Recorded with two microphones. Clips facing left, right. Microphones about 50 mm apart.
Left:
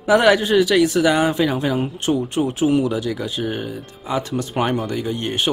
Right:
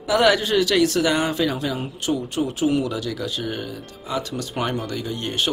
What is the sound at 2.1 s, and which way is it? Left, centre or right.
Speech, left.